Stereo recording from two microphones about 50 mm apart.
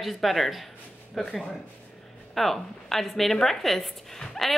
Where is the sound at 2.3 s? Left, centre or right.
Centre.